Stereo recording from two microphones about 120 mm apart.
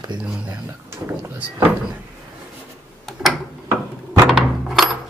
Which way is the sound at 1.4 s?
15° right (ahead or behind).